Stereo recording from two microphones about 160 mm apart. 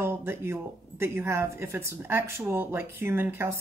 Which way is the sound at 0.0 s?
15° right (ahead or behind).